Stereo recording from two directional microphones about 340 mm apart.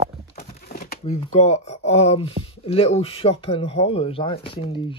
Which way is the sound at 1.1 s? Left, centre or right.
Centre.